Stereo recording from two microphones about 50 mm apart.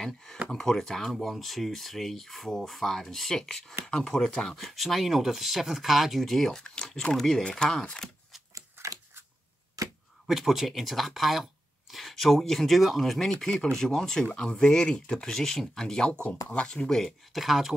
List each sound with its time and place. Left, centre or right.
0.0 s speech: centre
7.4 s speech: centre
8.8 s scissors: right
10.2 s speech: centre
17.3 s speech: centre